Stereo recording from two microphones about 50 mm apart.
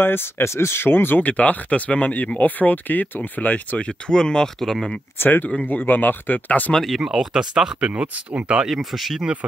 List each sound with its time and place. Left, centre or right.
0.0 s speech: left
0.4 s speech: left
1.2 s speech: left
4.1 s speech: centre
5.2 s speech: left
7.0 s speech: centre
7.8 s speech: right
8.6 s speech: centre
9.2 s speech: right